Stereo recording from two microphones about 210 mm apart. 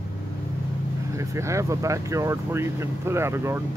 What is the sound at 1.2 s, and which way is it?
Speech, 15° right (ahead or behind).